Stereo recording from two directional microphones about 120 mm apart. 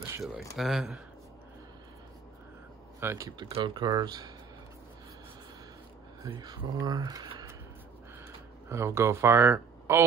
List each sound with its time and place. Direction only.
0.2 s speech: centre (ahead or behind)
3.0 s speech: 20° right (ahead or behind)
3.3 s speech: 35° right (ahead or behind)
6.3 s speech: 35° right (ahead or behind)
8.6 s speech: 20° right (ahead or behind)